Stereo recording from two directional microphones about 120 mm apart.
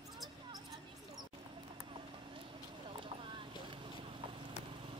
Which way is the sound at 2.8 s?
45° right (ahead or behind).